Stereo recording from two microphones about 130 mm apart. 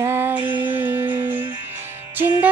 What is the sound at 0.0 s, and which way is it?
Music, 15° right (ahead or behind).